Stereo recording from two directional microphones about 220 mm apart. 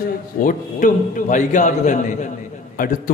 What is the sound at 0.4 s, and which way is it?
A man's voice, 35° left (ahead or behind).